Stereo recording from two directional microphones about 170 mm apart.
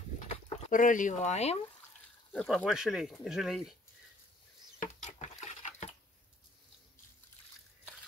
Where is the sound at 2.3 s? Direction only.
5° left (ahead or behind).